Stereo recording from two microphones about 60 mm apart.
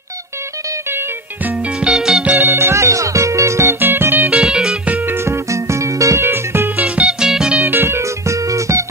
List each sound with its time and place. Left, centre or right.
1.8 s music: centre
2.3 s music: right
3.6 s music: right
4.3 s music: centre
5.0 s music: right
6.2 s music: right
7.1 s music: centre
7.6 s music: right